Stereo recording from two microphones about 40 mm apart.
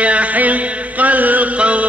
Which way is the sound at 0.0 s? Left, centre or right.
Right.